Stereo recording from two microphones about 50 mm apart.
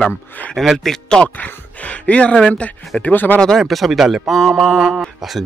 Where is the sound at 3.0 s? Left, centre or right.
Left.